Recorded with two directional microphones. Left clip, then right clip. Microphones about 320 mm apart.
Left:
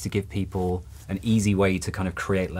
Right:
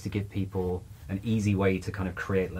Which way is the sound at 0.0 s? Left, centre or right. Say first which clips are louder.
Left 6 dB; left.